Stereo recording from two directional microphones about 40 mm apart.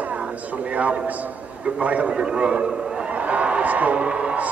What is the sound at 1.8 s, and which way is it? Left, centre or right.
Speech, right.